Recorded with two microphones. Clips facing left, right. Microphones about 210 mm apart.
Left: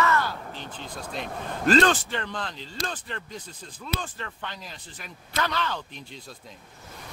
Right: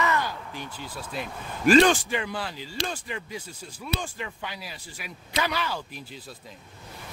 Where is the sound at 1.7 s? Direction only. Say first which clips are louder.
Right 3 dB; 10° right (ahead or behind).